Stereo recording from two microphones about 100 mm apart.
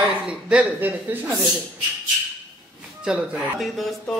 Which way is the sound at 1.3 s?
Centre (ahead or behind).